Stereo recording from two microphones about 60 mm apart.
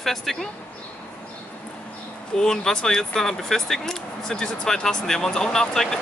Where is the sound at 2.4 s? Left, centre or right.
Centre.